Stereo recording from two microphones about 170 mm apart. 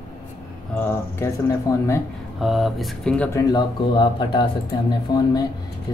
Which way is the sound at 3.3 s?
25° left (ahead or behind).